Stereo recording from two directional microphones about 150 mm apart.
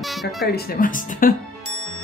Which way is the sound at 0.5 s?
90° left.